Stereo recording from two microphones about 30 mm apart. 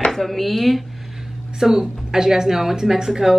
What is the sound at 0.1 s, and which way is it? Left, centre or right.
Speech, centre.